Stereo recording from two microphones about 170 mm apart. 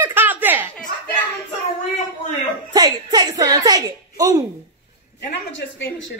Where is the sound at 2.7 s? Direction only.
25° right (ahead or behind).